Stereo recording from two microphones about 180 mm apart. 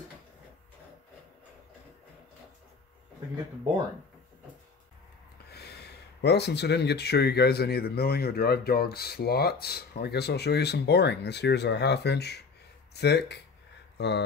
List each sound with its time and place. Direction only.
5.5 s speech: 65° left (ahead or behind)